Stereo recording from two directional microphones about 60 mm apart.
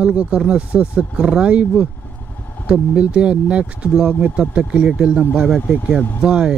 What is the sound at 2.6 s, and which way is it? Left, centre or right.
Speech, centre.